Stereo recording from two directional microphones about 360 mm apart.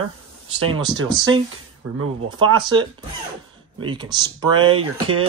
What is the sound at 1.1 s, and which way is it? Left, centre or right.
Speech, centre.